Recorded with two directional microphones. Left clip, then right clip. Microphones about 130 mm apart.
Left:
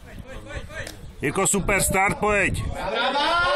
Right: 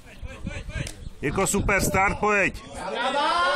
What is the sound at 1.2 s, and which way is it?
Speech, 15° left (ahead or behind).